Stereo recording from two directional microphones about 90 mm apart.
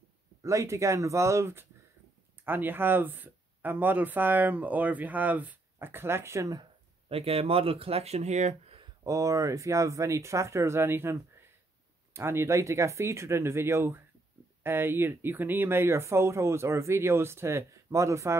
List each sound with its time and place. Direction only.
0.4 s speech: 35° right (ahead or behind)
7.1 s speech: 90° right
9.0 s speech: 35° right (ahead or behind)